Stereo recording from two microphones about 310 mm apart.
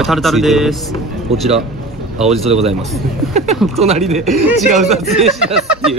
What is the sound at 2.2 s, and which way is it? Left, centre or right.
Speech, centre.